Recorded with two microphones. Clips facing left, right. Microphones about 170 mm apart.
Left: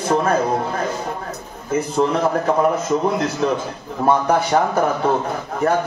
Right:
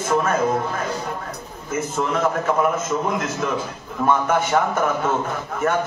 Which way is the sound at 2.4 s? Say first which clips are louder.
Left 3 dB; 35° left (ahead or behind).